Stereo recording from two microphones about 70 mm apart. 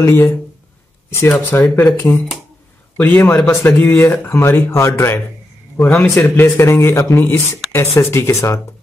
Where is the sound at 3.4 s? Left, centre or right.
Left.